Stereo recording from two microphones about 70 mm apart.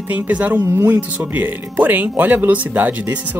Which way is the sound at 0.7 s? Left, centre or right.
Right.